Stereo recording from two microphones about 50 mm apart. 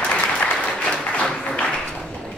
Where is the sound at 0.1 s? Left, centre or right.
Left.